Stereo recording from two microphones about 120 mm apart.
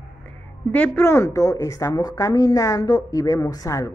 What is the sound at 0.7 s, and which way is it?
A woman's voice, 15° left (ahead or behind).